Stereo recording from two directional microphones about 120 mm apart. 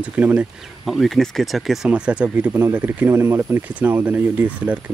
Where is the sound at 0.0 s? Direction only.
15° right (ahead or behind).